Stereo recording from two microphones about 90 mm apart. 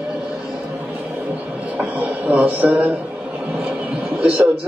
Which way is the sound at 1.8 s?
15° right (ahead or behind).